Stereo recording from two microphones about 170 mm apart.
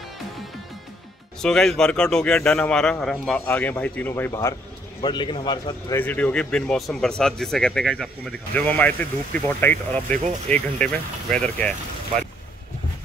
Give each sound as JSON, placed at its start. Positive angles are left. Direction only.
{"t": 1.4, "sound": "a man's voice", "side_deg": 5}
{"t": 5.0, "sound": "a man's voice", "side_deg": 25}
{"t": 5.9, "sound": "speech", "side_deg": 10}